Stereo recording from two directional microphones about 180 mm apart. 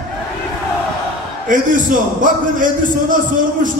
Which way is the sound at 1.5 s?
45° right (ahead or behind).